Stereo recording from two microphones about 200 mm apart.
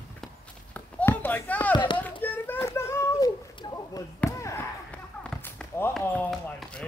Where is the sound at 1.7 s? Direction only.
20° left (ahead or behind).